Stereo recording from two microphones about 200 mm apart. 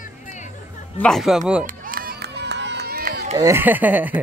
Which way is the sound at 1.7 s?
45° right (ahead or behind).